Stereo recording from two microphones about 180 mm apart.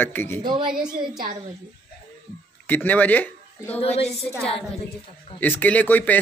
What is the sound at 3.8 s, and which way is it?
Speech, 35° left (ahead or behind).